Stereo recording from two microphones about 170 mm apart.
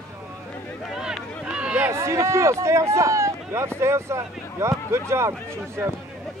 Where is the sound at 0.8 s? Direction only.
5° right (ahead or behind).